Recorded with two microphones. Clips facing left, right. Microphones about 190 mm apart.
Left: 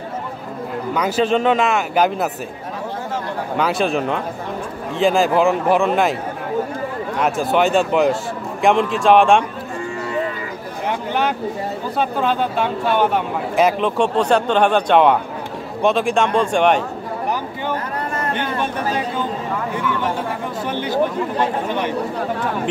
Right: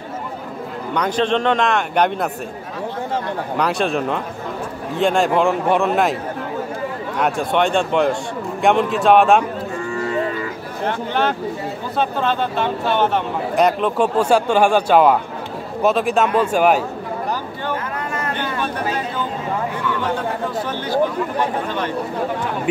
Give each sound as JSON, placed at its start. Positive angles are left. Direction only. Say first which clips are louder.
{"t": 0.9, "sound": "speech", "louder": "left 1 dB", "side_deg": 5}
{"t": 3.5, "sound": "speech", "louder": "left 1 dB", "side_deg": 0}
{"t": 7.2, "sound": "speech", "louder": "left 1 dB", "side_deg": 0}
{"t": 10.9, "sound": "speech", "louder": "even", "side_deg": 10}
{"t": 18.3, "sound": "speech", "louder": "left 2 dB", "side_deg": 20}